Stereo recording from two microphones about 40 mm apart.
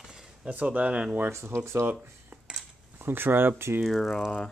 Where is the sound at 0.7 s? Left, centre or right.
Right.